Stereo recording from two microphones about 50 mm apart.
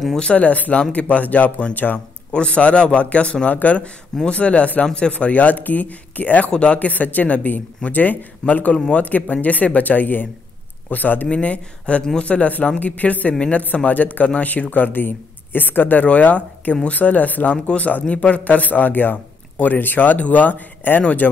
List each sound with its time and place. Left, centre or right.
0.2 s a man's voice: left
2.3 s a man's voice: left
11.2 s a man's voice: left
12.0 s speech: centre
12.3 s a man's voice: left
13.3 s a man's voice: left
13.8 s a man's voice: left